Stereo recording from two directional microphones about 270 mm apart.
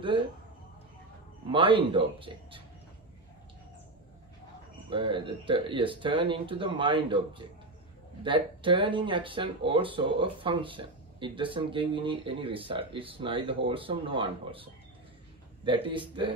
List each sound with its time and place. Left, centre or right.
1.5 s speech: centre
4.8 s speech: centre